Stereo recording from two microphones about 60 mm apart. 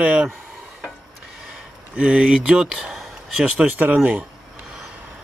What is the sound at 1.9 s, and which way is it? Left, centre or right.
Speech, centre.